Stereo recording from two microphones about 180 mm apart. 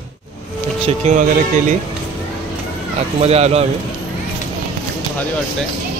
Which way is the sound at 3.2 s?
35° right (ahead or behind).